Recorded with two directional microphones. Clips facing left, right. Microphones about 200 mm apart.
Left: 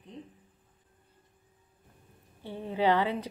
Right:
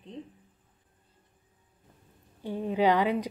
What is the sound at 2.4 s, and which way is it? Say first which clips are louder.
Speech: right 2 dB; 15° right (ahead or behind).